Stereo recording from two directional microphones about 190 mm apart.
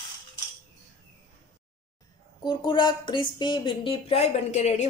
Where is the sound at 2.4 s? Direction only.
25° left (ahead or behind).